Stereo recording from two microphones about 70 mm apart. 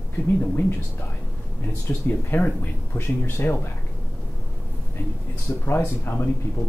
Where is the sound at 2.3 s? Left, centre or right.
Left.